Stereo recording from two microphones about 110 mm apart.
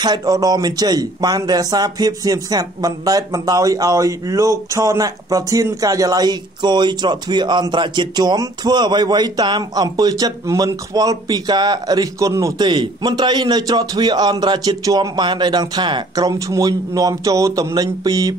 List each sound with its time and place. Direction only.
0.0 s speech: 40° right (ahead or behind)
12.6 s speech: 45° right (ahead or behind)